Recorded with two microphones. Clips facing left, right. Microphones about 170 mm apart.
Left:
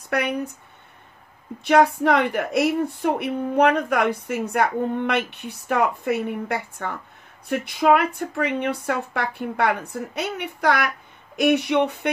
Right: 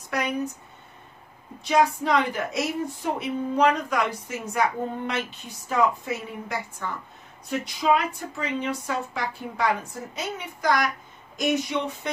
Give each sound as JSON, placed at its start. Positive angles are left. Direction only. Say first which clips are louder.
{"t": 0.1, "sound": "speech", "louder": "left 4 dB", "side_deg": 60}
{"t": 1.6, "sound": "speech", "louder": "left 5 dB", "side_deg": 60}